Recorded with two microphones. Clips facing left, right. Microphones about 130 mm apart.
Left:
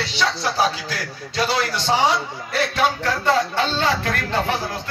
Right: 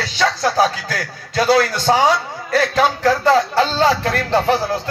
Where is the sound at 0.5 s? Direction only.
45° right (ahead or behind).